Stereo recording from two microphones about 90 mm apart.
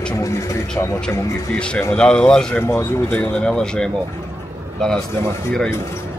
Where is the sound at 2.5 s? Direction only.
25° left (ahead or behind).